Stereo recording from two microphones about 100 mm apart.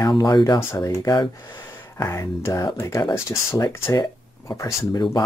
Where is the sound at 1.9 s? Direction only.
30° left (ahead or behind).